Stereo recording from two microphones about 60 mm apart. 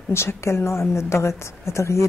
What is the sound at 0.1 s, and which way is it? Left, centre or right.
A woman's voice, left.